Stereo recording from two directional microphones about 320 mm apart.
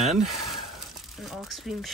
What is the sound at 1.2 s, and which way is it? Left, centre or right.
Speech, centre.